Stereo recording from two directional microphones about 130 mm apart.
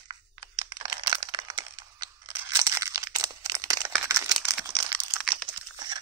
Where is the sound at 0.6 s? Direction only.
35° right (ahead or behind).